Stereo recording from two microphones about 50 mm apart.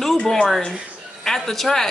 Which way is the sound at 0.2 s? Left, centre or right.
Centre.